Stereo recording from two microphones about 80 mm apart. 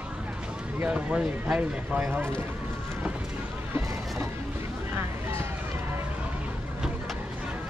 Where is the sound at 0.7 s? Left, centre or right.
Centre.